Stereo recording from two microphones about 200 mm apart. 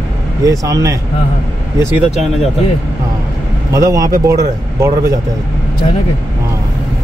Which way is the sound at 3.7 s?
15° right (ahead or behind).